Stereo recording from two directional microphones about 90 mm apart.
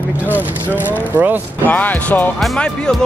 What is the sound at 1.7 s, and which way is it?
Speech, 20° left (ahead or behind).